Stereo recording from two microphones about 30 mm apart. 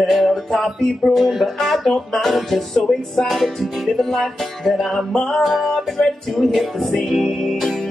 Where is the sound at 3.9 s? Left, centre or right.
Centre.